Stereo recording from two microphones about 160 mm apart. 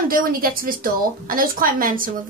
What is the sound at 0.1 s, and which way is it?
A woman's voice, 65° right (ahead or behind).